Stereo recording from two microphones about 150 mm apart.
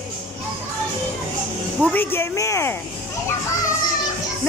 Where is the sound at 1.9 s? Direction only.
15° left (ahead or behind).